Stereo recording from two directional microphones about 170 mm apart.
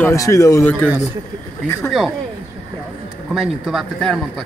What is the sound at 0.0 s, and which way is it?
Speech, 20° left (ahead or behind).